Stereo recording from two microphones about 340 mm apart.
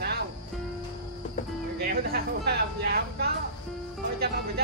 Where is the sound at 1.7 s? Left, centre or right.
Right.